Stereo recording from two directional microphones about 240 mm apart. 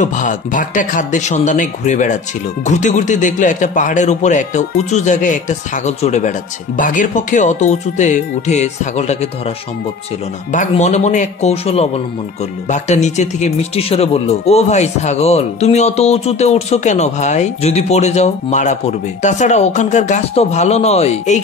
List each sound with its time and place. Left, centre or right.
0.0 s a man's voice: left
10.5 s speech: left